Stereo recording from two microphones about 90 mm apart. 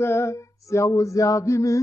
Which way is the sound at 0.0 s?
30° left (ahead or behind).